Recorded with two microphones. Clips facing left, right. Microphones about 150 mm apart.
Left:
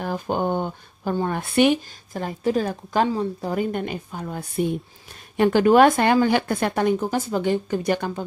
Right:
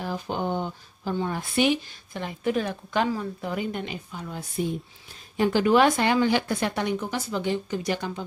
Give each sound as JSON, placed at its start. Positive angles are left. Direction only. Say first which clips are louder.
{"t": 0.0, "sound": "speech", "louder": "left 5 dB", "side_deg": 50}